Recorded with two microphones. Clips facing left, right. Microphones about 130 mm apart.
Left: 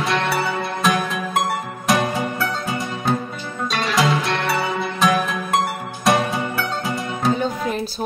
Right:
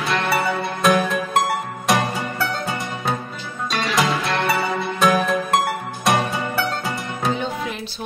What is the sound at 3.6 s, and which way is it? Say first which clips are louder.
Music: left 1 dB; centre (ahead or behind).